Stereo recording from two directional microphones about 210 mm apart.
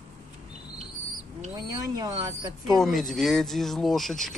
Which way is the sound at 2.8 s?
Centre (ahead or behind).